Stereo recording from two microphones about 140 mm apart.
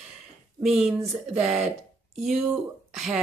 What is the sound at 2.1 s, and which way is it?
Speech, centre (ahead or behind).